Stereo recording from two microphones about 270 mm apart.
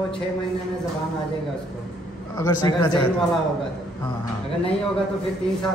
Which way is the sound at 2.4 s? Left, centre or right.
Centre.